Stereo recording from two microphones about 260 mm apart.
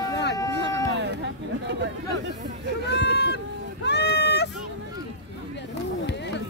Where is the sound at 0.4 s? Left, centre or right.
Centre.